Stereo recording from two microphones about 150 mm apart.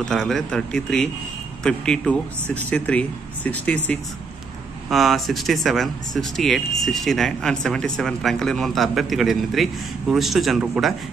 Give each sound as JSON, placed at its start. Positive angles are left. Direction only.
{"t": 0.0, "sound": "speech", "side_deg": 5}